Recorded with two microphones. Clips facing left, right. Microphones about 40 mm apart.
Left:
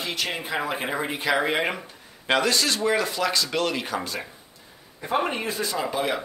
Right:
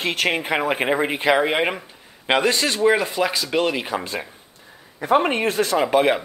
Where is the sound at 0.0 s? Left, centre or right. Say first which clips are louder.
Right 7 dB; right.